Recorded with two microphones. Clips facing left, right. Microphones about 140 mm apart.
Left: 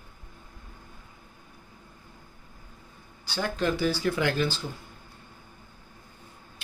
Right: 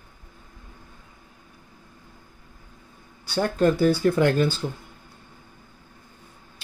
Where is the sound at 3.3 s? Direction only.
50° right (ahead or behind).